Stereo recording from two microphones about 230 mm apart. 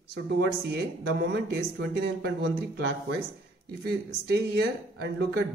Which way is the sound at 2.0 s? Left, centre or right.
Right.